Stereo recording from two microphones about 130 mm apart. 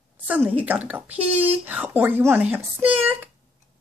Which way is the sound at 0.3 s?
15° right (ahead or behind).